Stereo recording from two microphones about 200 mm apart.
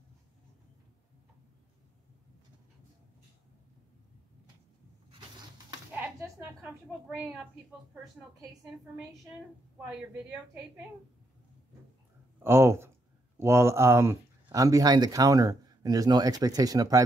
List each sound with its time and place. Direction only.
5.9 s bleat: 10° right (ahead or behind)
9.8 s a woman's voice: 5° right (ahead or behind)
12.4 s speech: 10° right (ahead or behind)